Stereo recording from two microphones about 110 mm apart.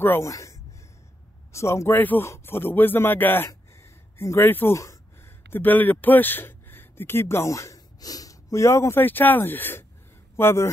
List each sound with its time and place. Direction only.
0.0 s a man's voice: 20° left (ahead or behind)